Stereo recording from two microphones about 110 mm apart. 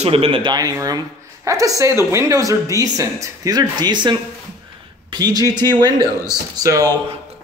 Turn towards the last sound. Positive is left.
turn(degrees=-30)  # may be behind; listen again after turning